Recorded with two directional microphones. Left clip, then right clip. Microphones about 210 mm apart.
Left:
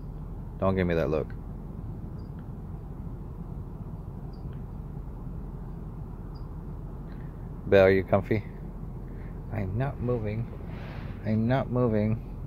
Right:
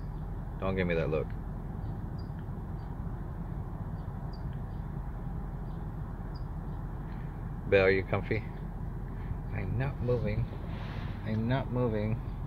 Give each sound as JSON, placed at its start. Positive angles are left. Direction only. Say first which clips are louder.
{"t": 0.6, "sound": "speech", "louder": "left 5 dB", "side_deg": 35}
{"t": 7.7, "sound": "speech", "louder": "left 5 dB", "side_deg": 30}
{"t": 9.6, "sound": "speech", "louder": "left 5 dB", "side_deg": 25}